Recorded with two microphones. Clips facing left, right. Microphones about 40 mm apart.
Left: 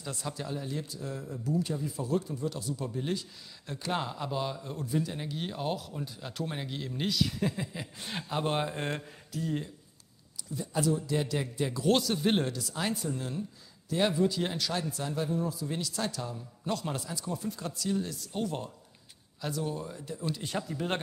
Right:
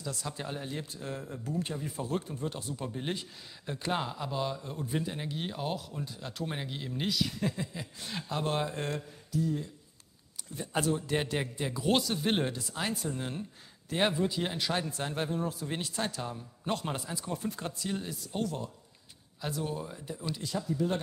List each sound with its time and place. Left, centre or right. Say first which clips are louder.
0.3 s a man's voice: left 4 dB; right
3.9 s speech: left 1 dB; centre
5.0 s speech: even; centre
7.3 s speech: left 1 dB; centre
8.0 s speech: left 2 dB; left
9.3 s speech: right 2 dB; left
10.5 s speech: left 1 dB; right
11.7 s speech: left 2 dB; centre
12.4 s a man's voice: left 1 dB; right
17.3 s a man's voice: even; right
18.0 s speech: even; centre
19.4 s speech: left 1 dB; centre
20.4 s speech: right 4 dB; left